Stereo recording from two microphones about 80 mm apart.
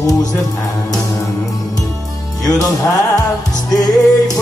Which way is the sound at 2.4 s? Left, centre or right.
Left.